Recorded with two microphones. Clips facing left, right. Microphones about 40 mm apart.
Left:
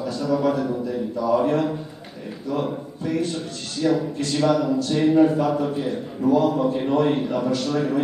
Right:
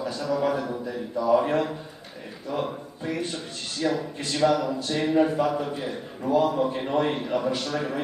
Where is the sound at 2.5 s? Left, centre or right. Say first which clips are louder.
Left 3 dB; centre.